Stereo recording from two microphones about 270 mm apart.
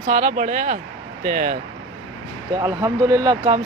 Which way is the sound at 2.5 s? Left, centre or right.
Centre.